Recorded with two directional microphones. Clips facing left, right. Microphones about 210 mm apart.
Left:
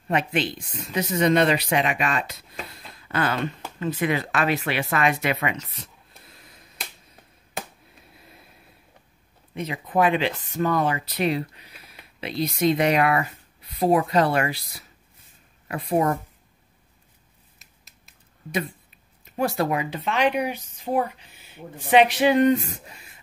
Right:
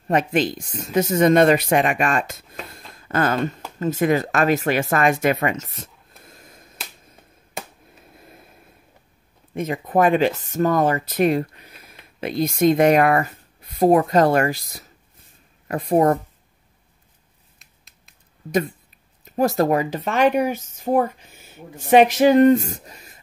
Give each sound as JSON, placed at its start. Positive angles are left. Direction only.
{"t": 0.1, "sound": "speech", "side_deg": -40}
{"t": 2.7, "sound": "a sound", "side_deg": -45}
{"t": 3.8, "sound": "speech", "side_deg": -45}
{"t": 9.5, "sound": "speech", "side_deg": -45}
{"t": 17.6, "sound": "finger snapping", "side_deg": 0}
{"t": 19.2, "sound": "speech", "side_deg": -40}